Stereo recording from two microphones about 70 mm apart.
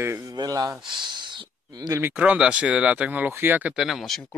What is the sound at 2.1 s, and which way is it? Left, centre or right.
Speech, centre.